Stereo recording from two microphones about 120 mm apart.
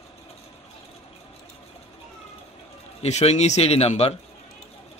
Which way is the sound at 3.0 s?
65° left (ahead or behind).